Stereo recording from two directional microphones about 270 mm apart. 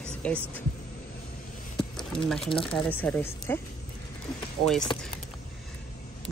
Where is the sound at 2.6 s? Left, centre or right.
Centre.